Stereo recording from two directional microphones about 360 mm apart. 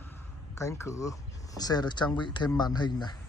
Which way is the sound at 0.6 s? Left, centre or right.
Centre.